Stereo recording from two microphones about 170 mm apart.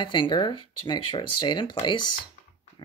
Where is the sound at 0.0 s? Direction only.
30° left (ahead or behind).